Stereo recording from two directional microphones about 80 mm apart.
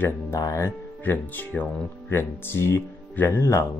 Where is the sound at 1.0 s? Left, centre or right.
Left.